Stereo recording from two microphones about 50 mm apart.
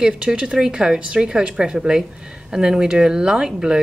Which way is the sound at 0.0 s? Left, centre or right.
Centre.